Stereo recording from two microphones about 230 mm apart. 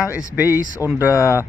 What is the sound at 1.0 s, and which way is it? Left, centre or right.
Speech, centre.